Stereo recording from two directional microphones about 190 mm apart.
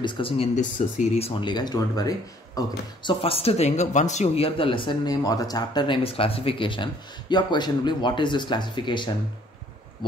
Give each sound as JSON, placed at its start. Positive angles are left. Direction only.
{"t": 0.0, "sound": "speech", "side_deg": 30}
{"t": 0.6, "sound": "speech", "side_deg": 40}